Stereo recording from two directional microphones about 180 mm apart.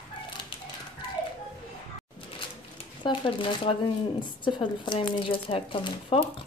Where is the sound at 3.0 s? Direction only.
25° left (ahead or behind).